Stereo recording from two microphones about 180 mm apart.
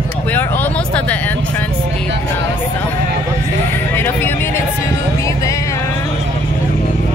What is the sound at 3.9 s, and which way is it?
Speech, 10° left (ahead or behind).